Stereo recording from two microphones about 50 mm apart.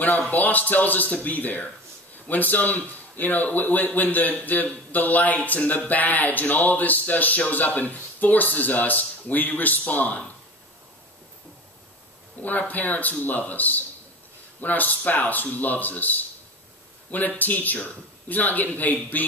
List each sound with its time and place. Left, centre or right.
0.3 s a man's voice: left
12.4 s a man's voice: left
17.4 s a man's voice: left